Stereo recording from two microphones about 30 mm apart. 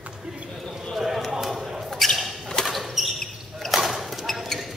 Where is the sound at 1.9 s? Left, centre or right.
Centre.